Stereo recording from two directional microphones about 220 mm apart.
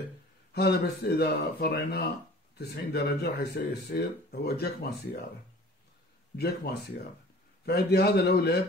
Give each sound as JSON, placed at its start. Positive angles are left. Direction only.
{"t": 0.6, "sound": "speech", "side_deg": 45}
{"t": 6.3, "sound": "speech", "side_deg": 45}